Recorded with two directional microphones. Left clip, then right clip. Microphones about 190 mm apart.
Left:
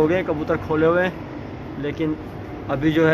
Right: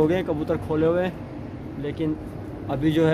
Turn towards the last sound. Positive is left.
turn(degrees=-15)  # may be behind; listen again after turning